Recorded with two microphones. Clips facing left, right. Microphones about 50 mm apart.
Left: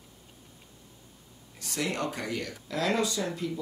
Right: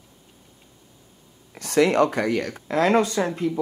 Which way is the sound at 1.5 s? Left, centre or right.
Right.